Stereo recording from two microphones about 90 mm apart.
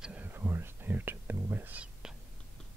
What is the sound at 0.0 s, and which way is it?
Whispering, 15° right (ahead or behind).